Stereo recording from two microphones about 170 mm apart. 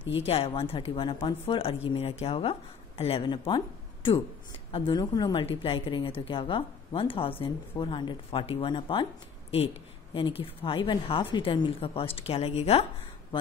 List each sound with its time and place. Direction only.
0.2 s a woman's voice: 35° left (ahead or behind)
10.1 s a woman's voice: 30° left (ahead or behind)